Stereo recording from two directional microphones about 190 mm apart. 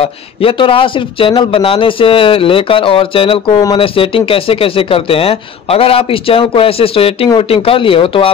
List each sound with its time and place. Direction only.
0.4 s speech: 30° left (ahead or behind)